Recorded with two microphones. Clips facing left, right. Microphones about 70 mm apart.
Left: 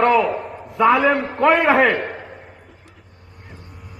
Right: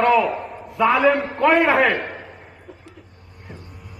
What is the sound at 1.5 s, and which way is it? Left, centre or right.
Speech, centre.